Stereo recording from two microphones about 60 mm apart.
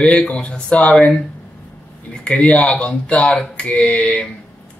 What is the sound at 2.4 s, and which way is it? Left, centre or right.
Speech, centre.